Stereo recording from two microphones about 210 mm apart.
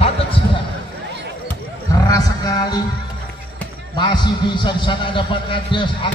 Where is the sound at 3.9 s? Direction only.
20° left (ahead or behind).